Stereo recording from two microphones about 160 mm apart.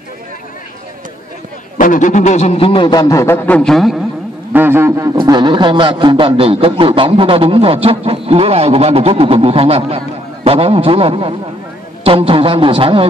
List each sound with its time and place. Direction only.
1.8 s a man's voice: 55° left (ahead or behind); by 3.9 s 5° left (ahead or behind)
4.5 s a sound: 10° right (ahead or behind)
5.1 s a man's voice: 30° right (ahead or behind)